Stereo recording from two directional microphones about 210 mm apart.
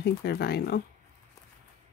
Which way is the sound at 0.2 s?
50° left (ahead or behind).